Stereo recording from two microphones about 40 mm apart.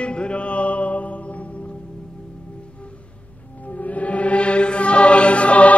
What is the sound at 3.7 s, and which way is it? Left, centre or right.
Music, left.